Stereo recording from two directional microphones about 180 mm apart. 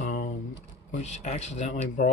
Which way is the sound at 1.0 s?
40° left (ahead or behind).